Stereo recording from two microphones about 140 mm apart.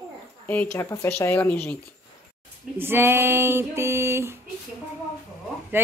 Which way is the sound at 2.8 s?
15° right (ahead or behind).